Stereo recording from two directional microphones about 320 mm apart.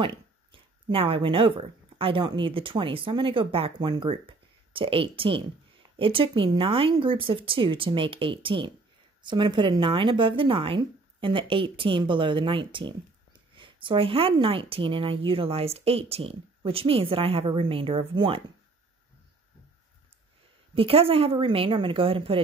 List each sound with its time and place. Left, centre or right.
0.0 s a woman's voice: centre
20.7 s a woman's voice: centre